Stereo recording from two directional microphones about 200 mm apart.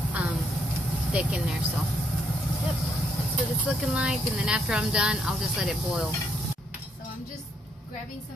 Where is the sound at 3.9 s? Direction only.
5° right (ahead or behind).